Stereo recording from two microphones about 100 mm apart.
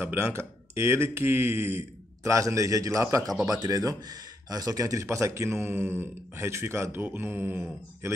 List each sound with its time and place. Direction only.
0.0 s a man's voice: 25° right (ahead or behind)